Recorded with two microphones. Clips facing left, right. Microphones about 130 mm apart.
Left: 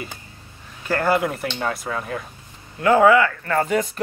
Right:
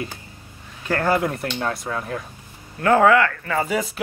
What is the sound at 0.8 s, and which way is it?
Speech, centre (ahead or behind).